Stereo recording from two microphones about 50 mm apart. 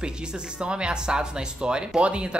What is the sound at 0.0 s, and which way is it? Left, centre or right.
A woman's voice, centre.